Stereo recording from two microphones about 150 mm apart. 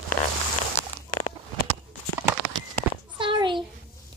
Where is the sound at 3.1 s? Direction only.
35° right (ahead or behind).